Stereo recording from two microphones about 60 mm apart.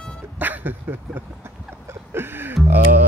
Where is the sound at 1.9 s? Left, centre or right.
Right.